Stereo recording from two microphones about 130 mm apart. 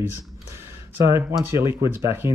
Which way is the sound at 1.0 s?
25° right (ahead or behind).